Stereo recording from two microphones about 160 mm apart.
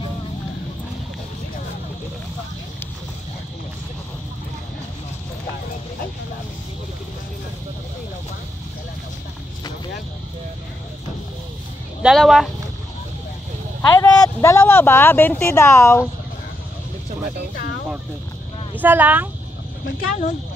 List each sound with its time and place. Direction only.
12.0 s speech: centre (ahead or behind)
13.9 s speech: 20° left (ahead or behind)
18.8 s speech: 10° right (ahead or behind)
19.8 s speech: 55° left (ahead or behind)